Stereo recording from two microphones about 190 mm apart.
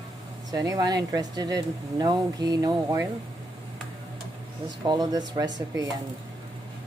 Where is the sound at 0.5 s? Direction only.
20° right (ahead or behind).